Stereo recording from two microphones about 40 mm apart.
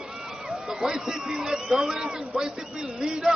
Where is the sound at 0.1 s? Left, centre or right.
Centre.